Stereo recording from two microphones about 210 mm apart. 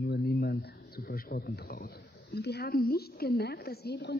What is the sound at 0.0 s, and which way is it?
Speech, 55° left (ahead or behind).